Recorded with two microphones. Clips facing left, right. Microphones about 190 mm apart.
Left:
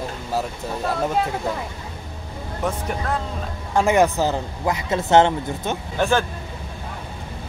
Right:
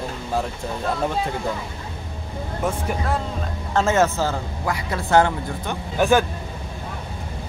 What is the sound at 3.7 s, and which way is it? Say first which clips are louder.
A man's voice: left 2 dB; 15° left (ahead or behind).